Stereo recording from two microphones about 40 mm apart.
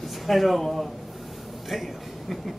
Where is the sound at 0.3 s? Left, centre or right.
Centre.